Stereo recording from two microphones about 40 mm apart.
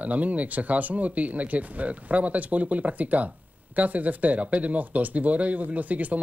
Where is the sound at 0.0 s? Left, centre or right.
Right.